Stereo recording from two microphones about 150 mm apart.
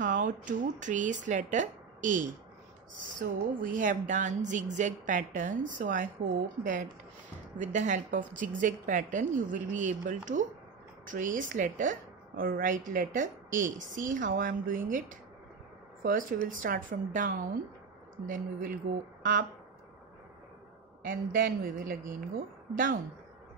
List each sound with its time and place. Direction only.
0.0 s a woman's voice: 60° right (ahead or behind)
21.0 s a woman's voice: 70° right (ahead or behind)